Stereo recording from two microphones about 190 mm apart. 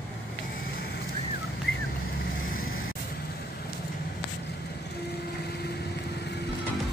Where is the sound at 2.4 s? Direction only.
50° left (ahead or behind).